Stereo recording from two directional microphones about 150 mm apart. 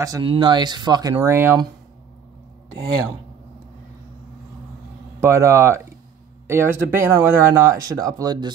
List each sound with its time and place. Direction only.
0.2 s speech: 35° right (ahead or behind)
1.2 s speech: 15° right (ahead or behind)
5.2 s speech: 20° right (ahead or behind)